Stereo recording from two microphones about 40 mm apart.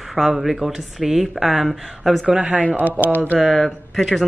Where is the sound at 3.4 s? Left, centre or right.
Centre.